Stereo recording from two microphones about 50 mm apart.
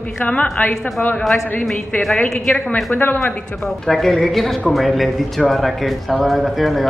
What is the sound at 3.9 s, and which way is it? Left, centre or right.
A man's voice, centre.